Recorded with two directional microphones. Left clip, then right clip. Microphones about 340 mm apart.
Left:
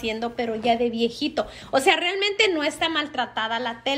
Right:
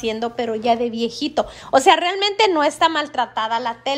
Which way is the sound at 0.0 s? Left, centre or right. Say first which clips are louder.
Right 4 dB; centre.